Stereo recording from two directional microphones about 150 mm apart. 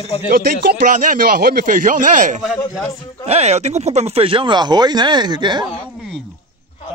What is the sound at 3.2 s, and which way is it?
Speech, 45° right (ahead or behind).